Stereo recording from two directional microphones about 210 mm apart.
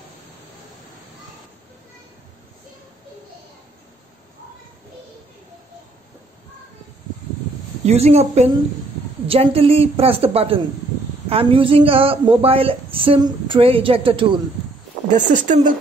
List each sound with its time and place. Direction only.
7.8 s a woman's voice: 30° right (ahead or behind)
15.0 s a woman's voice: 35° right (ahead or behind)